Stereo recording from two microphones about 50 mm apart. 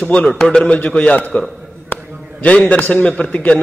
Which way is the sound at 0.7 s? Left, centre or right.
Left.